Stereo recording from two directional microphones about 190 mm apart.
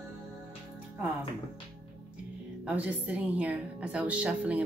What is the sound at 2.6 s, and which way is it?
A woman's voice, 5° right (ahead or behind).